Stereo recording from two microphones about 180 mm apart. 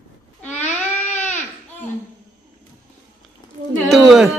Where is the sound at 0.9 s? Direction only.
40° left (ahead or behind).